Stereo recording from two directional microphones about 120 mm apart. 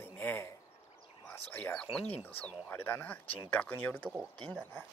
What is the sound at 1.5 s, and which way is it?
Speech, 10° left (ahead or behind).